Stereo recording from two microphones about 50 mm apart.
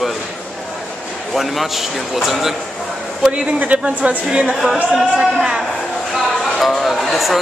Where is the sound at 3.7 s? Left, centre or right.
Right.